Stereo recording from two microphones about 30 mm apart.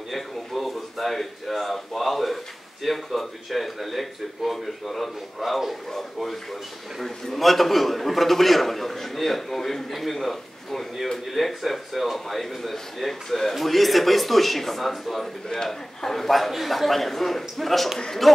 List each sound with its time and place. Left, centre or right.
0.1 s a man's voice: centre
7.3 s a man's voice: centre
15.5 s a man's voice: centre